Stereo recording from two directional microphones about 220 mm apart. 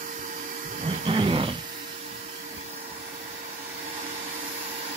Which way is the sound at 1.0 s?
25° right (ahead or behind).